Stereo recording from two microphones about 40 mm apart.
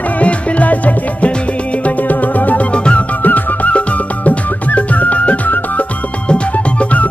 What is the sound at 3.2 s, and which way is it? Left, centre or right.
Music, left.